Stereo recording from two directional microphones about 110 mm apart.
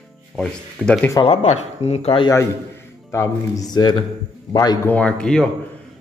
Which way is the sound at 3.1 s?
30° left (ahead or behind).